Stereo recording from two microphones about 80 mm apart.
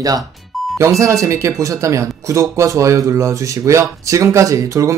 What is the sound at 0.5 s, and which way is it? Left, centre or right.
Music, centre.